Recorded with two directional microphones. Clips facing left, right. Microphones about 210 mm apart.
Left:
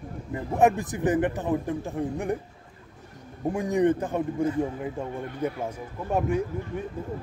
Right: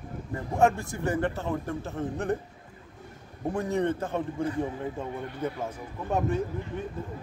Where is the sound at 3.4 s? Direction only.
15° left (ahead or behind).